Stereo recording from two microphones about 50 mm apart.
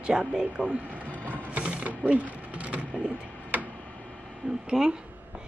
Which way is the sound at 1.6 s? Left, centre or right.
Right.